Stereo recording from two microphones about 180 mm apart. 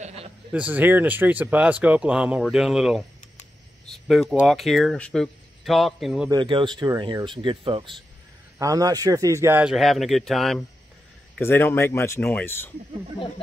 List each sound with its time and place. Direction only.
0.0 s a sound: 35° right (ahead or behind)
0.5 s speech: 10° right (ahead or behind)
6.3 s speech: 25° right (ahead or behind); by 10.6 s centre (ahead or behind)
11.3 s speech: 10° left (ahead or behind)